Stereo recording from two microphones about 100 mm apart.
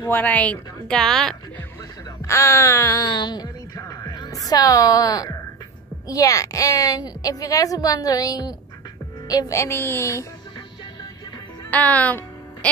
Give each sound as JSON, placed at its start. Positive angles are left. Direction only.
{"t": 0.1, "sound": "speech", "side_deg": 15}
{"t": 2.2, "sound": "a sound", "side_deg": 30}
{"t": 6.0, "sound": "a woman's voice", "side_deg": 35}
{"t": 9.6, "sound": "speech", "side_deg": 25}
{"t": 11.7, "sound": "speech", "side_deg": 15}